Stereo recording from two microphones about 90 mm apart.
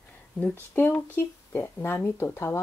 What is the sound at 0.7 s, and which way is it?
Speech, 25° left (ahead or behind).